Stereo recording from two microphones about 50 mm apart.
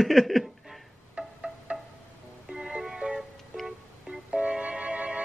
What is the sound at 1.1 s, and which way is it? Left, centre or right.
Music, centre.